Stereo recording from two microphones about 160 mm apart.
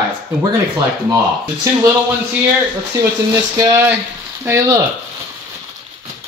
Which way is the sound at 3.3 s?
20° right (ahead or behind).